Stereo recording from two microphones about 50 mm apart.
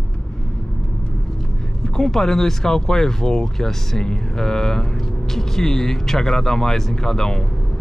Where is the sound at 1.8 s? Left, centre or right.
Centre.